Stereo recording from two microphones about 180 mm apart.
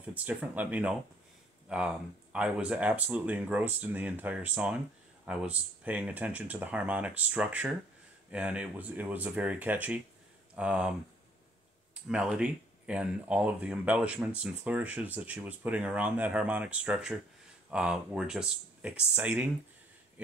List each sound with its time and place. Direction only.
0.0 s speech: 10° right (ahead or behind)